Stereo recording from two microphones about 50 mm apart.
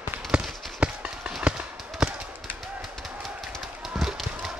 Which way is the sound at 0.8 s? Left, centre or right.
Right.